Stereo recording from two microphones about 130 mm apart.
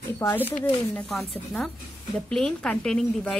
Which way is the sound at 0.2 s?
20° left (ahead or behind).